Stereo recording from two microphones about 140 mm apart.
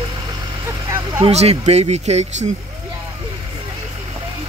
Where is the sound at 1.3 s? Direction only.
50° right (ahead or behind).